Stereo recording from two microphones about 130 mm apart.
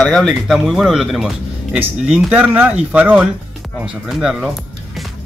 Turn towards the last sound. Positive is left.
turn(degrees=-5)  # may be behind; listen again after turning